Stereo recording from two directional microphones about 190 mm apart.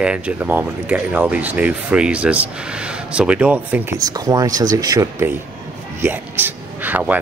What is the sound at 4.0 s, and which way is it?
Speech, 20° right (ahead or behind).